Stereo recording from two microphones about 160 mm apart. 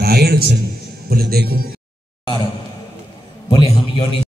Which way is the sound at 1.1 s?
80° right.